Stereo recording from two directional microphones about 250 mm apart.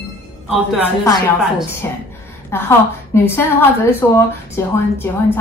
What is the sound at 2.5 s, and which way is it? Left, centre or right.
Speech, centre.